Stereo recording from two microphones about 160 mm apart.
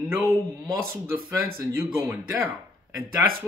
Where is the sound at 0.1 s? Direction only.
15° right (ahead or behind).